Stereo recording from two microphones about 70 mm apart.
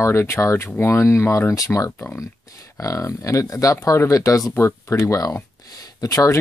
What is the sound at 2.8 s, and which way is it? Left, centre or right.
Speech, left.